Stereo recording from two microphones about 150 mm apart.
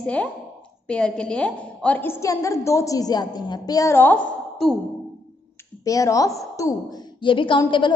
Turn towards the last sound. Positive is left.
turn(degrees=30)  # may be behind; listen again after turning